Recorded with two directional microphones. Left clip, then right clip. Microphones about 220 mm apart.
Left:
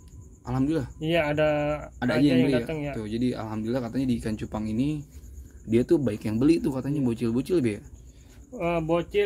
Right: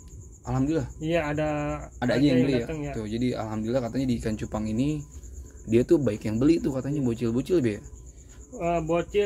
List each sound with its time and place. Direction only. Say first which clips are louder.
0.5 s speech: even; 5° left (ahead or behind)
1.0 s speech: left 4 dB; 40° left (ahead or behind)
2.0 s speech: right 1 dB; 5° left (ahead or behind)
8.5 s speech: even; 50° left (ahead or behind)